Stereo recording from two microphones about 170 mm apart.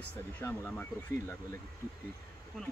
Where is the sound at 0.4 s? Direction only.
20° left (ahead or behind).